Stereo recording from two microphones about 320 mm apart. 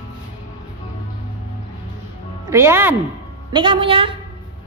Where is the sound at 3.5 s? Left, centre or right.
Centre.